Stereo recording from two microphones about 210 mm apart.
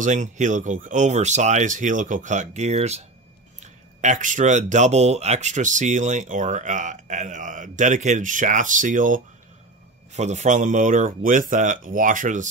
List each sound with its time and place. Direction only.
0.0 s speech: 35° right (ahead or behind)
4.0 s speech: 35° right (ahead or behind)